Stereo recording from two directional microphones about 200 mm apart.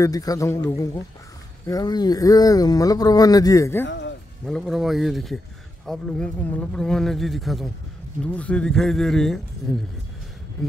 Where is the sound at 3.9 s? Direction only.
60° left (ahead or behind).